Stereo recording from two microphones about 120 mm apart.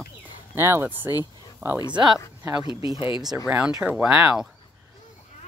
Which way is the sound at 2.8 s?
45° left (ahead or behind).